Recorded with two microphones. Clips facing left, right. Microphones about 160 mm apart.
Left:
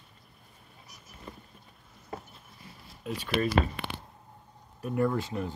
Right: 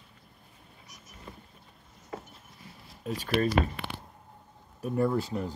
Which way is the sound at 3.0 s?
40° right (ahead or behind).